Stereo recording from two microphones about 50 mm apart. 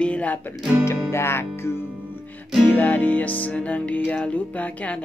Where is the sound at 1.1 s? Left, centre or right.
Left.